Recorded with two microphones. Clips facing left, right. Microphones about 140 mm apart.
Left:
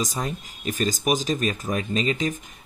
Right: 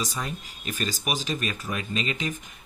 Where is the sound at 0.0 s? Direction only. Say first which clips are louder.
Left 4 dB; 40° left (ahead or behind).